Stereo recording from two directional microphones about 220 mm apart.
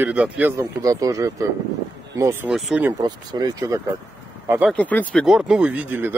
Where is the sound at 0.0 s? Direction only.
5° right (ahead or behind).